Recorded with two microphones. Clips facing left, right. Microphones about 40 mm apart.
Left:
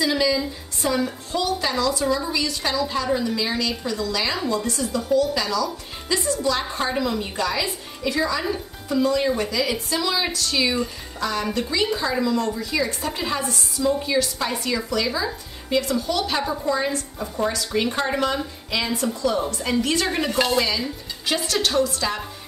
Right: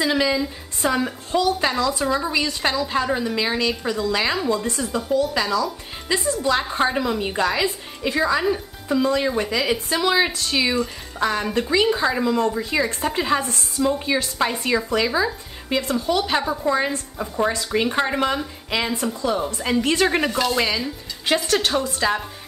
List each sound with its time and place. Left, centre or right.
0.0 s a woman's voice: right
8.2 s speech: right
13.8 s speech: right
20.2 s speech: left
20.5 s speech: right